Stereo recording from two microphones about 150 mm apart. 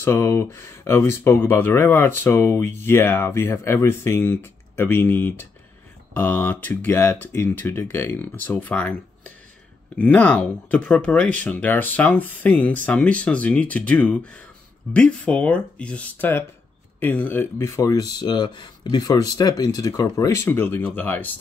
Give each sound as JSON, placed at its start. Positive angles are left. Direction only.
{"t": 0.0, "sound": "speech", "side_deg": 15}